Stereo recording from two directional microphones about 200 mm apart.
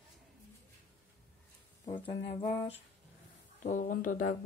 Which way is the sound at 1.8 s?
25° left (ahead or behind).